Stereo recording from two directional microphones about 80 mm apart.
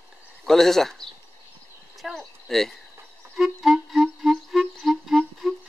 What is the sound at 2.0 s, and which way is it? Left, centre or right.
Speech, centre.